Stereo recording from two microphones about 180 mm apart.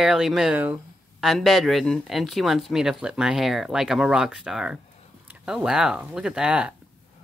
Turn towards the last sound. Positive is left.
turn(degrees=-5)  # may be behind; listen again after turning